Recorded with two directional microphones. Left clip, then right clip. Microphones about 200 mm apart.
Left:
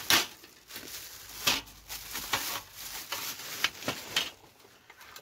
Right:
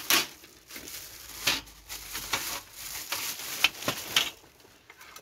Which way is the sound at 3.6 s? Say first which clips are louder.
Right 5 dB; 30° right (ahead or behind).